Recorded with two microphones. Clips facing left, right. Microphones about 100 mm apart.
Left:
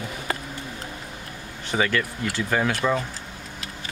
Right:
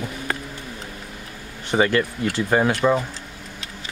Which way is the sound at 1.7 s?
30° right (ahead or behind).